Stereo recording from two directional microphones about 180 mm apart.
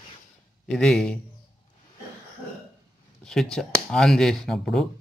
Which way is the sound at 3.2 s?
5° left (ahead or behind).